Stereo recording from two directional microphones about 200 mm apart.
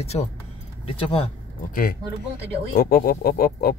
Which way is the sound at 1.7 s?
45° left (ahead or behind).